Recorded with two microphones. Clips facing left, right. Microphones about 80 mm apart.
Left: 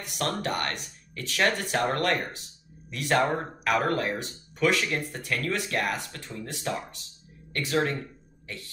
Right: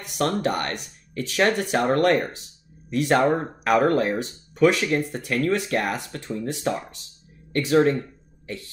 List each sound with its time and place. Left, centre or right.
0.0 s speech: right